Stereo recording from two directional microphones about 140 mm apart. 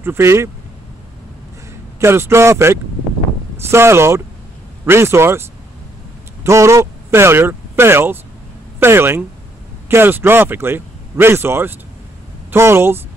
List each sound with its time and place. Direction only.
0.0 s speech: 20° right (ahead or behind)
2.0 s speech: 20° right (ahead or behind)
6.4 s speech: 20° right (ahead or behind)